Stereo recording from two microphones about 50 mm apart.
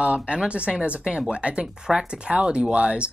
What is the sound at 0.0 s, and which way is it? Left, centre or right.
Speech, right.